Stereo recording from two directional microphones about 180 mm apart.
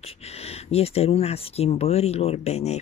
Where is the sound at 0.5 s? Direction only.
35° left (ahead or behind).